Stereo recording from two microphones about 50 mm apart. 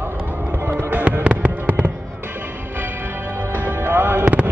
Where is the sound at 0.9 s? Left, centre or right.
Right.